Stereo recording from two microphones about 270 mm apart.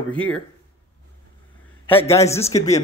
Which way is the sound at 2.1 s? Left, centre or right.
Centre.